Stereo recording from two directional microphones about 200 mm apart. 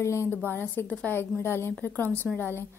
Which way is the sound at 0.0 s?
15° left (ahead or behind).